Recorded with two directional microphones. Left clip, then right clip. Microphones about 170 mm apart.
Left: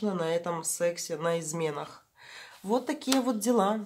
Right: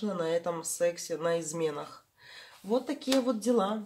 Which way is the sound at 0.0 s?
25° left (ahead or behind).